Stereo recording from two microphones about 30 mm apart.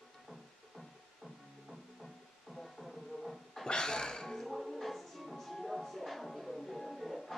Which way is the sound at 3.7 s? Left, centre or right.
Left.